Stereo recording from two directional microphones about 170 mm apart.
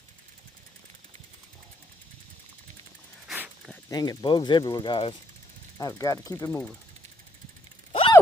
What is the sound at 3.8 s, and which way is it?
Speech, 20° left (ahead or behind).